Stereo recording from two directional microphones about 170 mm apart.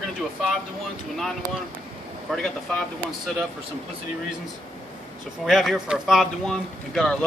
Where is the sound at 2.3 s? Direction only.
Centre (ahead or behind).